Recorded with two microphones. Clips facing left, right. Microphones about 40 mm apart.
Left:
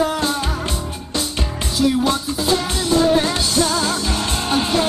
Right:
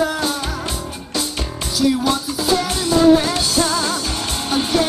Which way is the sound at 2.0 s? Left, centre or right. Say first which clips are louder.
Even; left.